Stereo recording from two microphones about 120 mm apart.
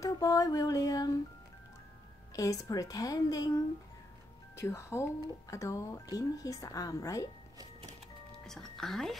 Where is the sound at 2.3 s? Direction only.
25° left (ahead or behind).